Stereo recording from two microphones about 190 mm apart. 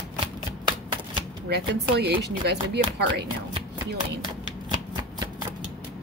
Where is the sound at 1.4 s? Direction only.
60° right (ahead or behind).